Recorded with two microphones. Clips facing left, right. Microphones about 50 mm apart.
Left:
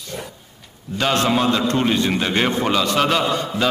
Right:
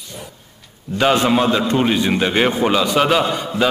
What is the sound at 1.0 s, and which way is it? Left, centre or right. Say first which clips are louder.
A man's voice: right 3 dB; centre.